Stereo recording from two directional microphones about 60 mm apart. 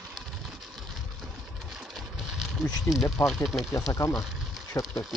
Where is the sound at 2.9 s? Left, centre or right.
Centre.